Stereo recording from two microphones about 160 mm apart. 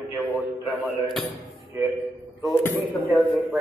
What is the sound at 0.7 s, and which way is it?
Speech, 10° right (ahead or behind).